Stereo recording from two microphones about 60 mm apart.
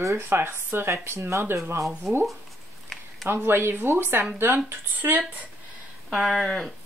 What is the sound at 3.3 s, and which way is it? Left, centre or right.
Speech, right.